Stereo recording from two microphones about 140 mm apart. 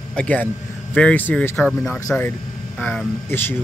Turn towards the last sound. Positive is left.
turn(degrees=15)  # may be behind; listen again after turning